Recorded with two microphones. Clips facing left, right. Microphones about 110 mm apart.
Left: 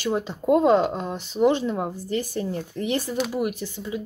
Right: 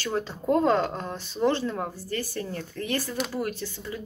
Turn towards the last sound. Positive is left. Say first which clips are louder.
# left 4 dB
turn(degrees=15)  # may be behind; listen again after turning